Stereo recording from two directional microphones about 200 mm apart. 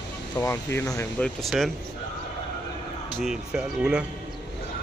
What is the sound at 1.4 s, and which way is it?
Speech, centre (ahead or behind).